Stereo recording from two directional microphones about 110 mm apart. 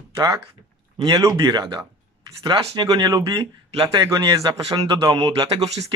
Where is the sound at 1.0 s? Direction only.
35° right (ahead or behind).